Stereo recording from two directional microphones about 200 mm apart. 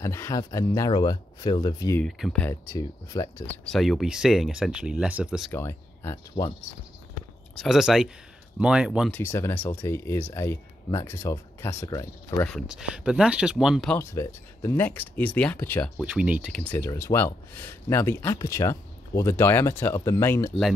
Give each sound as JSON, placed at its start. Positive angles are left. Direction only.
{"t": 0.0, "sound": "speech", "side_deg": 15}
{"t": 2.0, "sound": "speech", "side_deg": 0}
{"t": 2.7, "sound": "speech", "side_deg": 15}
{"t": 5.5, "sound": "speech", "side_deg": 10}
{"t": 7.5, "sound": "speech", "side_deg": 0}
{"t": 9.1, "sound": "speech", "side_deg": 10}
{"t": 12.4, "sound": "speech", "side_deg": 0}
{"t": 13.9, "sound": "speech", "side_deg": 15}
{"t": 16.0, "sound": "speech", "side_deg": -5}
{"t": 16.7, "sound": "speech", "side_deg": 10}